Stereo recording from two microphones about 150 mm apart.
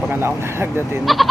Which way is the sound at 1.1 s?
Centre (ahead or behind).